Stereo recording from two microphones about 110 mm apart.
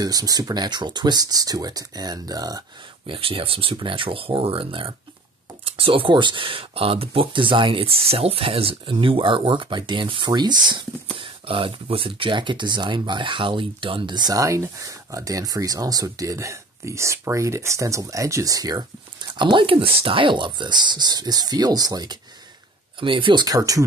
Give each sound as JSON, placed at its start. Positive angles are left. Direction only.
{"t": 0.0, "sound": "speech", "side_deg": -35}
{"t": 3.1, "sound": "speech", "side_deg": -55}
{"t": 11.1, "sound": "speech", "side_deg": -55}
{"t": 22.9, "sound": "speech", "side_deg": -50}